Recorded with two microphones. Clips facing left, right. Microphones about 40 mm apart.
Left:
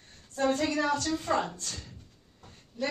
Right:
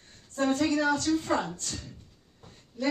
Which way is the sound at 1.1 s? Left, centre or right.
Centre.